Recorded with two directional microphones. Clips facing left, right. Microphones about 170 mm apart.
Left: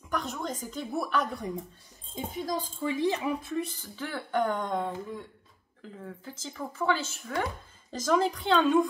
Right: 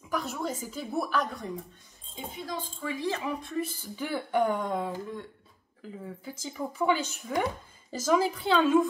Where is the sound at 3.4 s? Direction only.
Centre (ahead or behind).